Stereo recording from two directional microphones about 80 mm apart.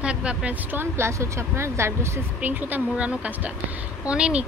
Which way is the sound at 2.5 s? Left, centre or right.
Right.